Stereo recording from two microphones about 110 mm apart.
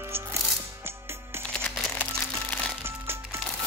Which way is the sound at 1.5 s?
10° left (ahead or behind).